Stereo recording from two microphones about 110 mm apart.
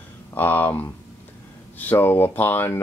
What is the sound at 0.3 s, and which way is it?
Speech, 15° left (ahead or behind).